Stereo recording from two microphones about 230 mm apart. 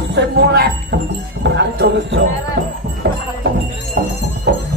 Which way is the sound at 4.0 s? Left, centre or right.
Right.